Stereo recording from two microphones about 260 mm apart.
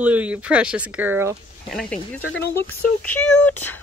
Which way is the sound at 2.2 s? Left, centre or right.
Left.